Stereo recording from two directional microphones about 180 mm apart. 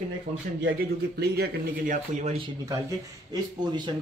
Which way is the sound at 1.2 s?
60° right (ahead or behind).